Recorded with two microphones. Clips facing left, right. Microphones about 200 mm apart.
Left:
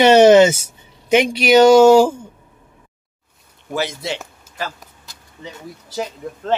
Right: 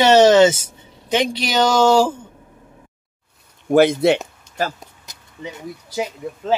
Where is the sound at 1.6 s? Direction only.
10° left (ahead or behind).